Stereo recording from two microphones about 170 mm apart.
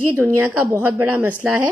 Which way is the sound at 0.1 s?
15° right (ahead or behind).